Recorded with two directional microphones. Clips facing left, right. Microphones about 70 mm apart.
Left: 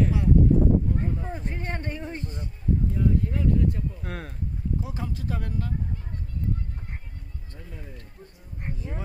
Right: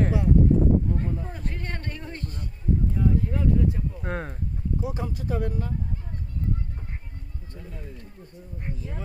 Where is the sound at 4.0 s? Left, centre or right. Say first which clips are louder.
Right 4 dB; right.